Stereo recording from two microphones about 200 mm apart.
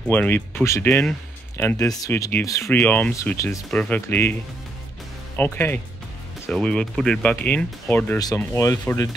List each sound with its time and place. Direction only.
0.1 s speech: 10° left (ahead or behind)